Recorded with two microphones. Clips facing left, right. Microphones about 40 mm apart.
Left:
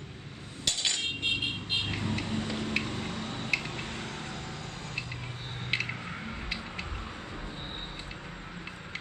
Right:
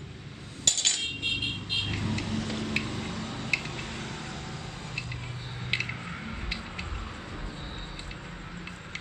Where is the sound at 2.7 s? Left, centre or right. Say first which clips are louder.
Even; centre.